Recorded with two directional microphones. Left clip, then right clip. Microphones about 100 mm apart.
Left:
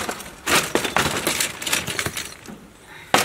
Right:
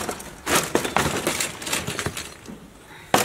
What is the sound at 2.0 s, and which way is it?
Breaking, 10° left (ahead or behind).